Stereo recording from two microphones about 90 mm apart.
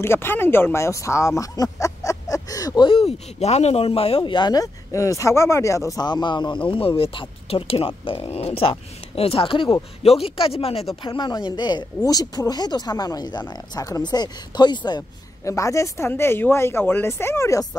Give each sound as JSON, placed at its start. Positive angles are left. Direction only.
{"t": 0.0, "sound": "speech", "side_deg": 25}
{"t": 2.8, "sound": "speech", "side_deg": 85}
{"t": 4.2, "sound": "speech", "side_deg": 55}
{"t": 6.0, "sound": "speech", "side_deg": 55}
{"t": 6.7, "sound": "speech", "side_deg": 80}
{"t": 11.0, "sound": "speech", "side_deg": 60}
{"t": 15.4, "sound": "speech", "side_deg": 35}
{"t": 16.1, "sound": "speech", "side_deg": 25}